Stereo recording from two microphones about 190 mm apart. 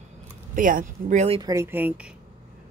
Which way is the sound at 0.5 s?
45° right (ahead or behind).